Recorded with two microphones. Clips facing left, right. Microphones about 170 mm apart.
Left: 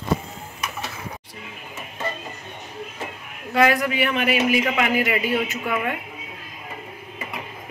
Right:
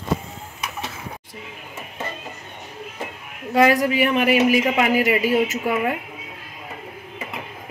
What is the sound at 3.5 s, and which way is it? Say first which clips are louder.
A man's voice: right 3 dB; 40° right (ahead or behind).